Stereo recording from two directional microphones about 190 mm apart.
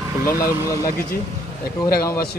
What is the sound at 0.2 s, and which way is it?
Speech, 50° left (ahead or behind).